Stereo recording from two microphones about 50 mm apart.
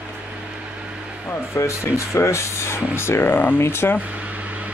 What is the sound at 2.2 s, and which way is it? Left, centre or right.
Speech, left.